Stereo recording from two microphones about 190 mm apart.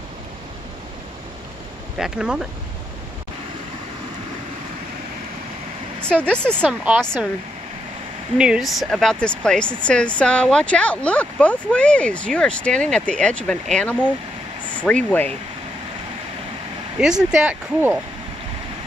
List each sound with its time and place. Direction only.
2.0 s speech: 5° right (ahead or behind)
6.3 s speech: 5° left (ahead or behind)
6.8 s speech: 5° right (ahead or behind)
8.4 s speech: 5° right (ahead or behind)
17.0 s speech: 5° right (ahead or behind)